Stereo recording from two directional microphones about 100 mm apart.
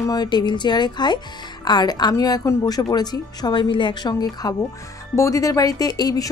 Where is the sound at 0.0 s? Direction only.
40° left (ahead or behind).